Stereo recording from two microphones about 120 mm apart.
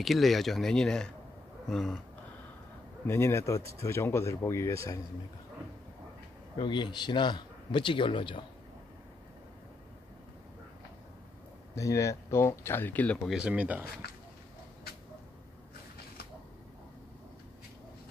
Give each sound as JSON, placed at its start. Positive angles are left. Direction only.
{"t": 0.0, "sound": "speech", "side_deg": 0}
{"t": 3.1, "sound": "speech", "side_deg": 20}
{"t": 6.5, "sound": "a man's voice", "side_deg": 40}
{"t": 11.7, "sound": "speech", "side_deg": 25}
{"t": 13.3, "sound": "speech", "side_deg": -10}